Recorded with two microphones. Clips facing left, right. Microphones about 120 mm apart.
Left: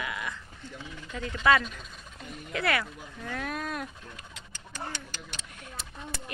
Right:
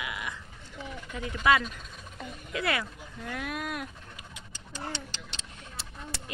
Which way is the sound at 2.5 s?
20° right (ahead or behind).